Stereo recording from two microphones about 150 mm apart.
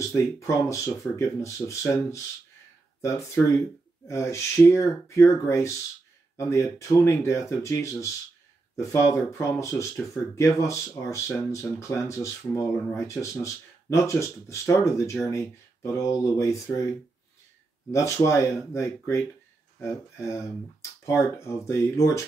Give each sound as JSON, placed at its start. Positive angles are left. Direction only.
{"t": 0.1, "sound": "speech", "side_deg": 20}
{"t": 17.9, "sound": "speech", "side_deg": 20}